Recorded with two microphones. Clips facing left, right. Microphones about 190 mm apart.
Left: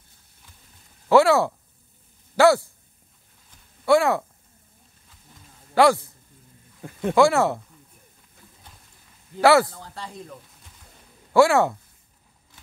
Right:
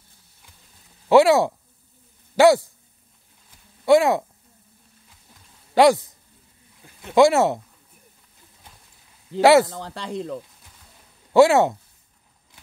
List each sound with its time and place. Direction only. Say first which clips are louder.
1.0 s speech: right 2 dB; 15° right (ahead or behind)
3.8 s speech: right 3 dB; 20° right (ahead or behind)
5.8 s speech: right 2 dB; 15° right (ahead or behind)
6.8 s a sound: left 15 dB; 55° left (ahead or behind)
7.2 s speech: right 3 dB; 20° right (ahead or behind)
9.4 s speech: right 3 dB; 20° right (ahead or behind)
9.7 s speech: right 7 dB; 90° right
11.3 s speech: right 3 dB; 20° right (ahead or behind)